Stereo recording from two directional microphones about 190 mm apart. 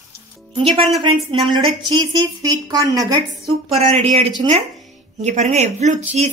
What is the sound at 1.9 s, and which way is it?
A woman's voice, 20° right (ahead or behind).